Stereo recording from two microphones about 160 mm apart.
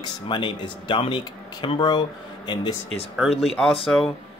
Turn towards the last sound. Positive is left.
turn(degrees=0)  # may be behind; listen again after turning